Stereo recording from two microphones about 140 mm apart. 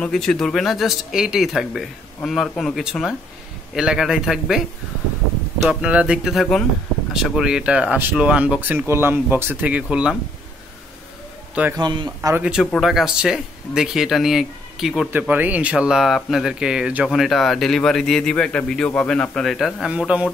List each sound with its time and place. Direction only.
0.0 s speech: 5° left (ahead or behind)
5.6 s speech: 5° right (ahead or behind)
11.7 s a man's voice: 30° right (ahead or behind)
12.4 s speech: 5° right (ahead or behind)
15.0 s speech: 15° right (ahead or behind)